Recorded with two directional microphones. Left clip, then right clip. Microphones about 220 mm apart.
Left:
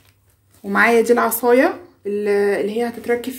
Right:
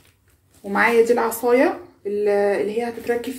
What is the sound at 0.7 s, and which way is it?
Speech, 45° left (ahead or behind).